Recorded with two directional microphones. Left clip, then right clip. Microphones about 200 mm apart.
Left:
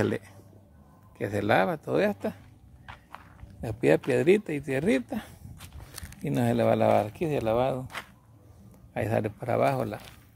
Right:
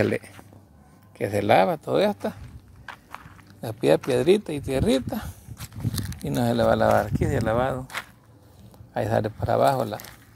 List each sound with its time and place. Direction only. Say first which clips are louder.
1.1 s speech: right 5 dB; 10° right (ahead or behind)
2.9 s walk: right 6 dB; 45° right (ahead or behind)
3.6 s speech: right 3 dB; centre (ahead or behind)
5.6 s horse: right 11 dB; 40° right (ahead or behind)
6.2 s speech: right 3 dB; 5° right (ahead or behind)
7.8 s a sound: right 5 dB; 40° right (ahead or behind)
8.9 s speech: right 4 dB; 5° right (ahead or behind)